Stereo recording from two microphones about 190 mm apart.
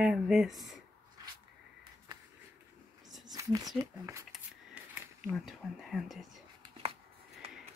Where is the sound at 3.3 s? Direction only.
20° right (ahead or behind).